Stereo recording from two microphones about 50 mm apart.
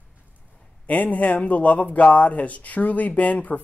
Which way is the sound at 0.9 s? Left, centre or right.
Left.